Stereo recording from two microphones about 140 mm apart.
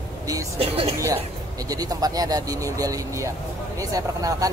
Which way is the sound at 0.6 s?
45° right (ahead or behind).